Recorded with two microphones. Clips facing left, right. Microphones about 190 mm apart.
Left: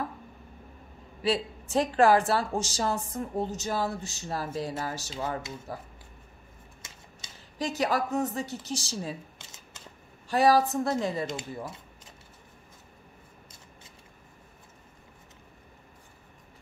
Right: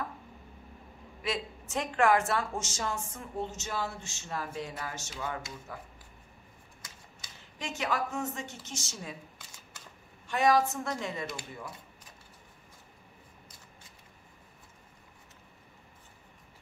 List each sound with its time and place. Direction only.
1.2 s speech: 35° left (ahead or behind)
6.8 s a sound: 25° left (ahead or behind)
7.5 s a woman's voice: 35° left (ahead or behind)
10.2 s speech: 35° left (ahead or behind)
11.3 s speech: 25° left (ahead or behind)